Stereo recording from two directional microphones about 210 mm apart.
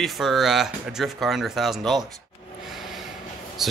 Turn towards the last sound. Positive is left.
turn(degrees=0)  # may be behind; listen again after turning